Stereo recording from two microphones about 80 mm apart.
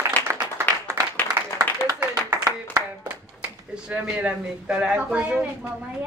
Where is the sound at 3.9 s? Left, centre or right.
Centre.